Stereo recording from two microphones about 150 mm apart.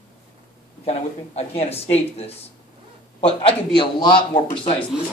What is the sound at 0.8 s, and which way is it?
A man's voice, 45° left (ahead or behind).